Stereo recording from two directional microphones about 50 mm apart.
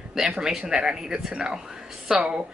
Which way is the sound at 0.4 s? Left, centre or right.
Centre.